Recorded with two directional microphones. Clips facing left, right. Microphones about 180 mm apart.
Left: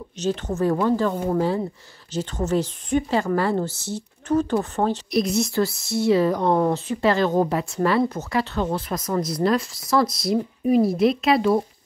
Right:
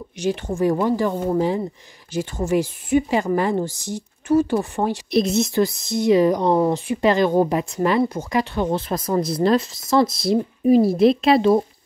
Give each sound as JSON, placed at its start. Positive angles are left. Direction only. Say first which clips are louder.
{"t": 0.2, "sound": "speech", "louder": "right 2 dB", "side_deg": -10}
{"t": 5.1, "sound": "speech", "louder": "right 6 dB", "side_deg": -25}
{"t": 8.7, "sound": "speech", "louder": "right 3 dB", "side_deg": -30}